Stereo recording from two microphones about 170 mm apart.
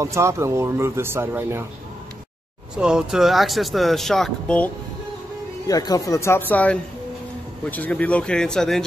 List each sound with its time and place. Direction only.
0.0 s speech: 15° right (ahead or behind)
2.7 s speech: 5° right (ahead or behind)
5.7 s speech: 20° left (ahead or behind); by 8.8 s 5° left (ahead or behind)